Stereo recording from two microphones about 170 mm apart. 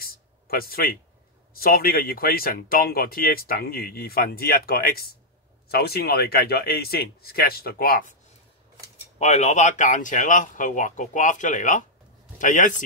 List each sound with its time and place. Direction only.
0.0 s a sound: 60° left (ahead or behind)
1.5 s speech: 60° left (ahead or behind)
9.2 s speech: 40° left (ahead or behind)